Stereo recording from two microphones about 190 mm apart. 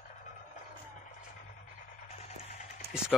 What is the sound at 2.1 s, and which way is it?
Music, 35° left (ahead or behind).